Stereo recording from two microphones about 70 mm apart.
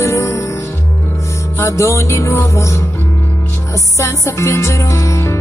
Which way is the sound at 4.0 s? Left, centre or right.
Left.